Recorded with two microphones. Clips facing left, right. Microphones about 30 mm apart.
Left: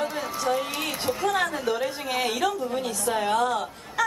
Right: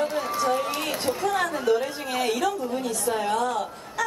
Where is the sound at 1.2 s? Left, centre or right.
Centre.